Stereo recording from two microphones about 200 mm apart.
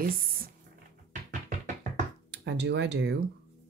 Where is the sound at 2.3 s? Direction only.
60° right (ahead or behind).